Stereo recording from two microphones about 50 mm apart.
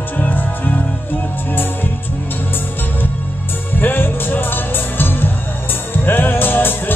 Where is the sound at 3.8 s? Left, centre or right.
Left.